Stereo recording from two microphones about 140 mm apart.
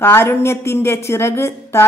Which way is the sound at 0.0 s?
15° left (ahead or behind).